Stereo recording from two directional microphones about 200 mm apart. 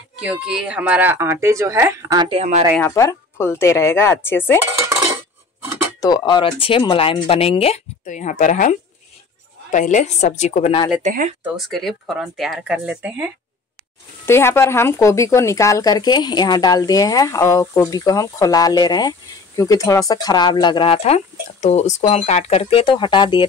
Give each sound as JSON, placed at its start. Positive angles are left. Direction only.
{"t": 0.2, "sound": "speech", "side_deg": -5}
{"t": 2.8, "sound": "speech", "side_deg": 15}
{"t": 5.9, "sound": "a woman's voice", "side_deg": 20}
{"t": 11.0, "sound": "speech", "side_deg": -35}
{"t": 11.4, "sound": "speech", "side_deg": 0}
{"t": 14.2, "sound": "speech", "side_deg": 10}